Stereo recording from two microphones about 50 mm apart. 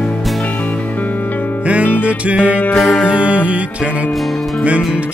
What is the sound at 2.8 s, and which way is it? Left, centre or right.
Music, centre.